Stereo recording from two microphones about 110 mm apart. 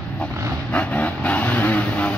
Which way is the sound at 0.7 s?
15° left (ahead or behind).